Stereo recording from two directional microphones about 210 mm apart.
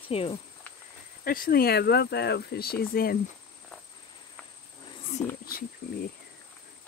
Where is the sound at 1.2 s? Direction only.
45° left (ahead or behind).